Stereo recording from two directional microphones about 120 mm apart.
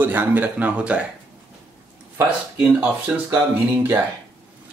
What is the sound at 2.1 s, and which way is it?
Speech, 10° right (ahead or behind).